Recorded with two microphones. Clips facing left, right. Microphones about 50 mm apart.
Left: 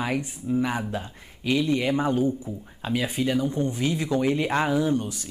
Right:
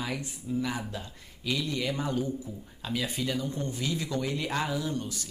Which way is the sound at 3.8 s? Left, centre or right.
Left.